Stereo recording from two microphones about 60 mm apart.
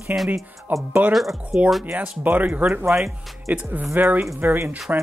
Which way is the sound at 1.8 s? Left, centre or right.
Right.